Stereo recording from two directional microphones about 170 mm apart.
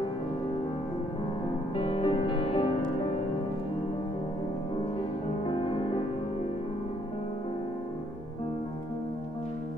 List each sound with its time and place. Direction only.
1.8 s music: 30° left (ahead or behind)
5.4 s music: 30° left (ahead or behind)